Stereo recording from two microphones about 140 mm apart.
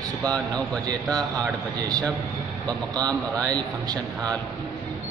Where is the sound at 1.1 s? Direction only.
25° right (ahead or behind).